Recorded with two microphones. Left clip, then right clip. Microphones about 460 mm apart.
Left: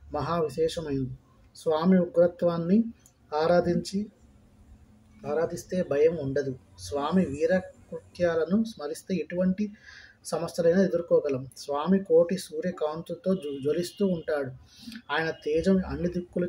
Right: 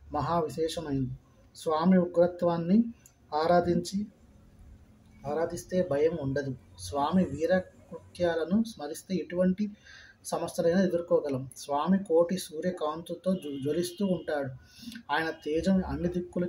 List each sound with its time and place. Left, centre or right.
0.1 s speech: right
5.2 s speech: right